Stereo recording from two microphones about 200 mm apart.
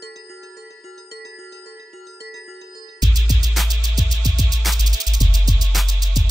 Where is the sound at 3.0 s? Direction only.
20° right (ahead or behind).